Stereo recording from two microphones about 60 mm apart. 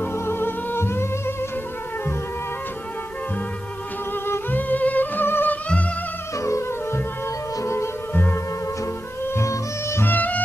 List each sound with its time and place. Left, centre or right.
0.0 s music: left
4.3 s music: left
6.4 s music: left
8.1 s sitar: left
9.2 s music: left
10.0 s music: left